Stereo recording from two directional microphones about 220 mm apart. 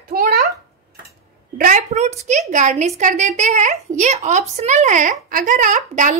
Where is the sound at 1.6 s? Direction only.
35° right (ahead or behind).